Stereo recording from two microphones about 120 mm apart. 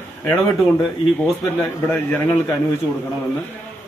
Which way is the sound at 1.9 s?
20° left (ahead or behind).